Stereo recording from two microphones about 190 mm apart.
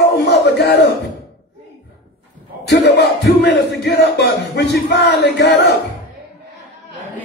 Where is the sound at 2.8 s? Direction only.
60° left (ahead or behind).